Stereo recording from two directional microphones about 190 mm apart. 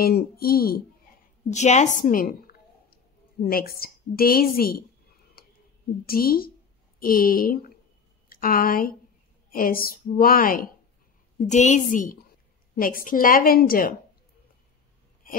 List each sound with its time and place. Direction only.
0.0 s a woman's voice: 55° left (ahead or behind)
1.5 s a woman's voice: 35° left (ahead or behind)
5.4 s a sound: 50° left (ahead or behind)
6.0 s a woman's voice: 50° left (ahead or behind)
11.3 s a woman's voice: 40° left (ahead or behind)